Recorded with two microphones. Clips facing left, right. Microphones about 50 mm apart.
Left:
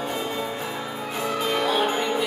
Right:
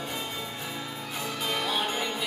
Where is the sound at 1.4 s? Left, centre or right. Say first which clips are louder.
Left 6 dB; centre.